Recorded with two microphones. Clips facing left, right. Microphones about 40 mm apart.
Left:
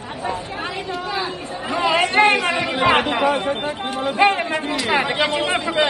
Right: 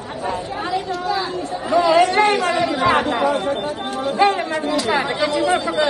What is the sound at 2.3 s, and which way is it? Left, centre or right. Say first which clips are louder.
Chatter: right 1 dB; left.